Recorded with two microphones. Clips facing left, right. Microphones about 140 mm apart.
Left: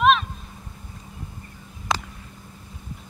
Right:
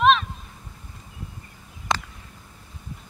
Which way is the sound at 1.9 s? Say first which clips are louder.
Even; centre (ahead or behind).